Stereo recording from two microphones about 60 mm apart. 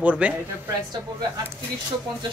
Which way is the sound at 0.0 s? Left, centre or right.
Right.